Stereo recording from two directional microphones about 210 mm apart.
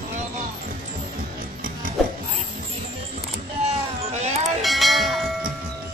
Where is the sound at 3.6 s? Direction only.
30° right (ahead or behind).